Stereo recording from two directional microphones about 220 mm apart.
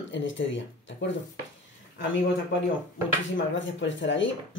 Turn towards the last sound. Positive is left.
turn(degrees=55)  # may be behind; listen again after turning